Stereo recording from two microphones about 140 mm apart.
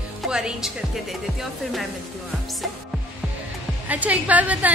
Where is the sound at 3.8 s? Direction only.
10° right (ahead or behind).